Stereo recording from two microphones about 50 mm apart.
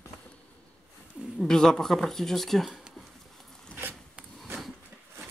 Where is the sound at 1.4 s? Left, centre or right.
Centre.